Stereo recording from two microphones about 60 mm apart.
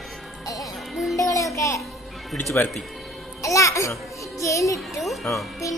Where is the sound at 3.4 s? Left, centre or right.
Left.